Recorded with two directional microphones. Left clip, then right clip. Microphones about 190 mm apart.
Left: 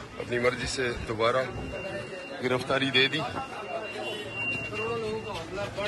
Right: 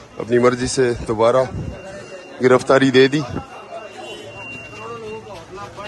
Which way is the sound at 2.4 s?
60° right (ahead or behind).